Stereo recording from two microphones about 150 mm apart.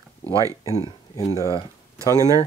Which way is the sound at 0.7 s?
45° left (ahead or behind).